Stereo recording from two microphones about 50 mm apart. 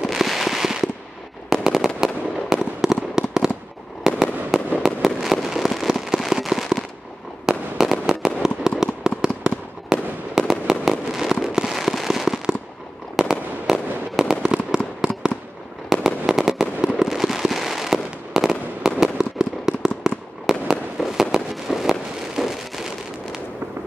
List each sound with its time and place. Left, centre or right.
0.0 s fireworks: centre
15.9 s fireworks: centre